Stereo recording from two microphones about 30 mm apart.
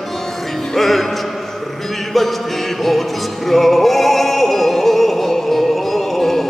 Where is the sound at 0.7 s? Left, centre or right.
Centre.